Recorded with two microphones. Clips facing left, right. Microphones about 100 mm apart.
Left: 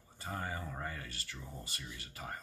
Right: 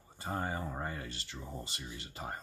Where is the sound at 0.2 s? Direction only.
30° right (ahead or behind).